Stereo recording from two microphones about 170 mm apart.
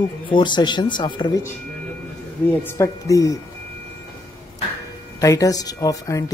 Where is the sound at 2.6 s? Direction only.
20° left (ahead or behind).